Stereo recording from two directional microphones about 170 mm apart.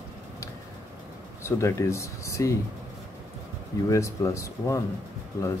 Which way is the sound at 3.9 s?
15° left (ahead or behind).